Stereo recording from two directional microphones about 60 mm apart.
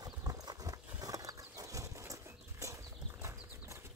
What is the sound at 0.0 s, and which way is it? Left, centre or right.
Horse, right.